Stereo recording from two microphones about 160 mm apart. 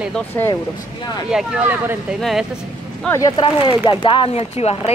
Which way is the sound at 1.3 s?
10° right (ahead or behind).